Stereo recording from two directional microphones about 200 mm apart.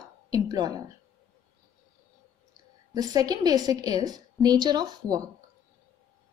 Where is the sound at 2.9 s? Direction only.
20° right (ahead or behind).